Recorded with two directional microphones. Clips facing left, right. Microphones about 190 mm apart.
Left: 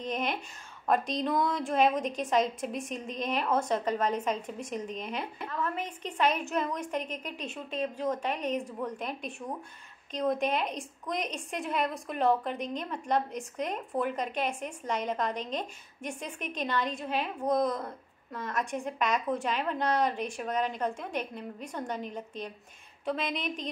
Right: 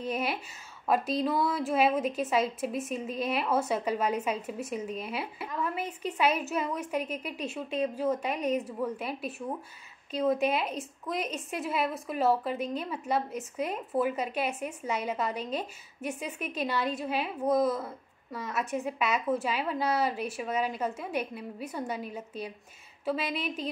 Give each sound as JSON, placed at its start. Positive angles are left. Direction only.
{"t": 0.0, "sound": "a woman's voice", "side_deg": -5}